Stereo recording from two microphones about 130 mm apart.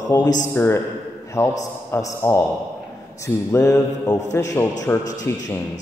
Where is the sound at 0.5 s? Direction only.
20° left (ahead or behind).